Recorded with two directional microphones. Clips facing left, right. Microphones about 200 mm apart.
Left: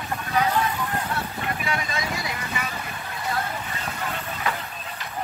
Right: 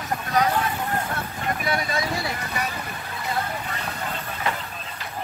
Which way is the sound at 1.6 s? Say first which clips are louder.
Right 5 dB; 40° right (ahead or behind).